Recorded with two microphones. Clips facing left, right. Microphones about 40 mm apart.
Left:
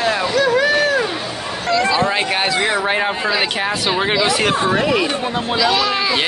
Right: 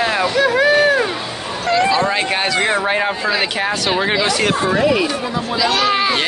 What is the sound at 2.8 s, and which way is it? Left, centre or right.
Speech, centre.